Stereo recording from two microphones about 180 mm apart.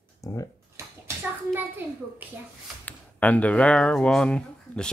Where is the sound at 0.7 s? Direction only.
15° right (ahead or behind).